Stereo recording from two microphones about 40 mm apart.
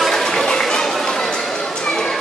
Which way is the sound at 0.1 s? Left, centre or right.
Centre.